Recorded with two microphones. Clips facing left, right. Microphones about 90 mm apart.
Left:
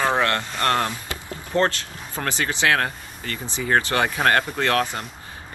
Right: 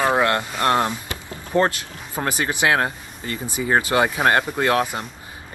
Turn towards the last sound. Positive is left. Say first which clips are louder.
# right 2 dB
turn(degrees=-10)  # may be behind; listen again after turning